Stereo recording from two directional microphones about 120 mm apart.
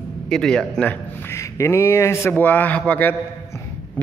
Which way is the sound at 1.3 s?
25° left (ahead or behind).